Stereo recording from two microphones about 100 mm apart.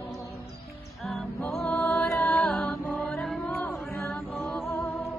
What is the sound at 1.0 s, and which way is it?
Music, centre (ahead or behind).